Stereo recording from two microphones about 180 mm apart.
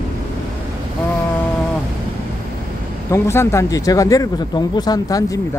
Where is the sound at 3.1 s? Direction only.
15° left (ahead or behind).